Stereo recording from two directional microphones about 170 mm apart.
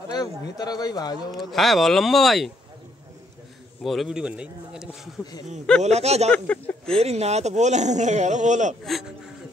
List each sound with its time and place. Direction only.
0.6 s speech: 25° left (ahead or behind)
1.5 s speech: centre (ahead or behind)
3.8 s speech: centre (ahead or behind)
5.8 s speech: 40° right (ahead or behind)
6.3 s speech: 10° left (ahead or behind)
7.0 s speech: 40° right (ahead or behind)